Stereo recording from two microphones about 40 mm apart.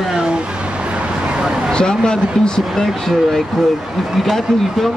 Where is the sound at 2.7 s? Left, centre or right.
Centre.